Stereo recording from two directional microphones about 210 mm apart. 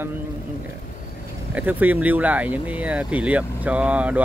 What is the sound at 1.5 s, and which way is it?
Speech, 5° right (ahead or behind).